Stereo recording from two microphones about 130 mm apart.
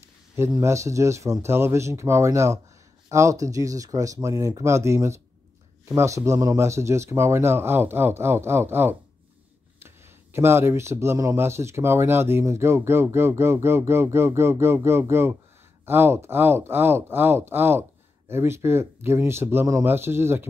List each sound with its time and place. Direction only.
0.6 s speech: 20° right (ahead or behind)